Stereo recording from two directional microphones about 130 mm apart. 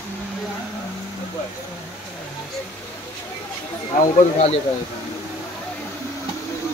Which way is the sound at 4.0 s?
65° left (ahead or behind).